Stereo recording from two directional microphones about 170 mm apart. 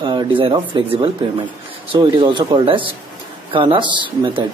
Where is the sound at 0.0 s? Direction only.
30° right (ahead or behind).